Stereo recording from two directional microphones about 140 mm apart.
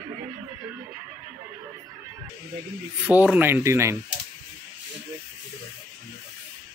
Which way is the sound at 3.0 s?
10° right (ahead or behind).